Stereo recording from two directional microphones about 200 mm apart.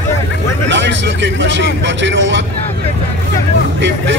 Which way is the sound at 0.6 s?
65° right (ahead or behind).